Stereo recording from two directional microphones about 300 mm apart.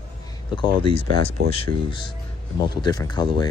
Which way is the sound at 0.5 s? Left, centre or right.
Centre.